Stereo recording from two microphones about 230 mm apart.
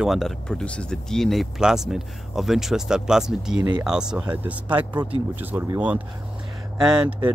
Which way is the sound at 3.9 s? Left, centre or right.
Centre.